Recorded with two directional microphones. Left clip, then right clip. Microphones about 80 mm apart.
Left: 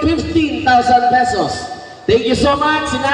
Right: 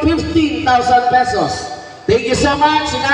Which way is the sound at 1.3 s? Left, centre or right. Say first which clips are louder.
Right 1 dB; right.